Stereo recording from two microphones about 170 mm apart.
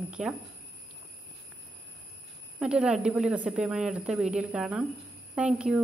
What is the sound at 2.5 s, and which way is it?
A woman's voice, 5° right (ahead or behind).